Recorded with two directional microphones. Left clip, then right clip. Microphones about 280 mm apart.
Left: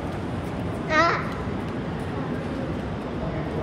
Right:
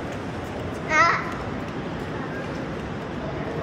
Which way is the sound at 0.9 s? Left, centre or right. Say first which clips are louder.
Right 2 dB; left.